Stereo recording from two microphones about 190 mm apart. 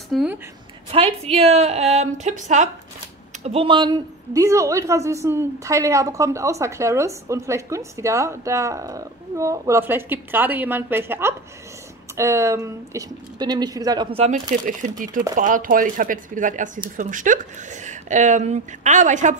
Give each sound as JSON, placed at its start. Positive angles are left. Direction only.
{"t": 0.1, "sound": "a woman's voice", "side_deg": -5}
{"t": 0.8, "sound": "a woman's voice", "side_deg": -35}
{"t": 3.4, "sound": "a woman's voice", "side_deg": -30}
{"t": 14.1, "sound": "a woman's voice", "side_deg": -35}